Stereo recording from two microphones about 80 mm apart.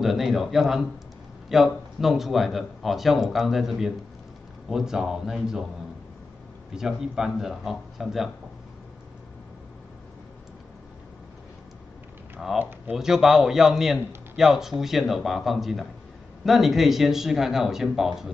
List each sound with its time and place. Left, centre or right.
0.0 s speech: centre
6.7 s speech: centre
12.5 s speech: right
12.9 s speech: centre